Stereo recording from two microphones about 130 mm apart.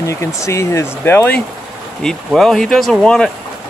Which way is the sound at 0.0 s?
25° left (ahead or behind).